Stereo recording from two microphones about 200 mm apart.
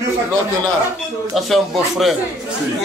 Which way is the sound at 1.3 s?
Centre (ahead or behind).